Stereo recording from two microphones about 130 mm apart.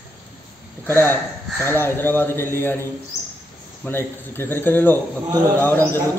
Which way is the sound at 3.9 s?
20° left (ahead or behind).